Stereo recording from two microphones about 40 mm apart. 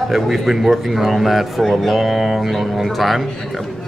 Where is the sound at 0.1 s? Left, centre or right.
Centre.